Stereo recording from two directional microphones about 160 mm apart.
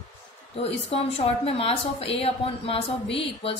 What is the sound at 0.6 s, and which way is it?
A woman's voice, 40° left (ahead or behind).